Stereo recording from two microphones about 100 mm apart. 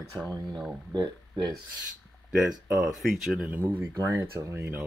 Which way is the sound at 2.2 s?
10° right (ahead or behind).